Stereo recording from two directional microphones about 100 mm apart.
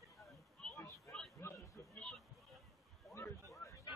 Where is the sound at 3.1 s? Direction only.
30° left (ahead or behind).